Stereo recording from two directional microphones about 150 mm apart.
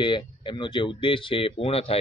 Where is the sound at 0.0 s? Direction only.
30° left (ahead or behind).